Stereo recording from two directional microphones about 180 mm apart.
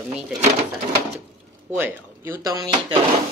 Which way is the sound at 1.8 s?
10° right (ahead or behind).